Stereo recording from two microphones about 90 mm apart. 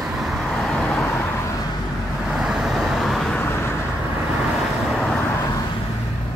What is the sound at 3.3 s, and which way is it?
Vehicle, 25° left (ahead or behind).